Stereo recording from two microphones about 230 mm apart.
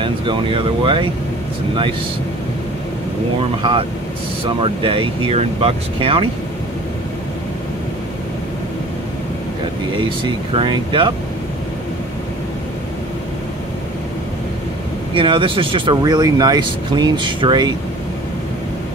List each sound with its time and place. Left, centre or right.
0.0 s speech: right
4.6 s speech: right
9.9 s speech: right
15.1 s speech: right